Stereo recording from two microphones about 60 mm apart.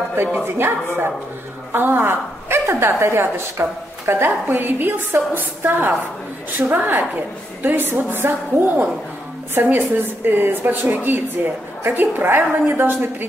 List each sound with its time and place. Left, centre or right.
0.5 s a woman's voice: right